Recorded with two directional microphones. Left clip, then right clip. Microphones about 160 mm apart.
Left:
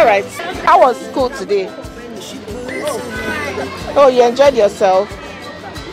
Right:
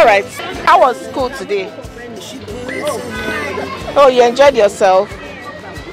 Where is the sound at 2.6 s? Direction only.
Centre (ahead or behind).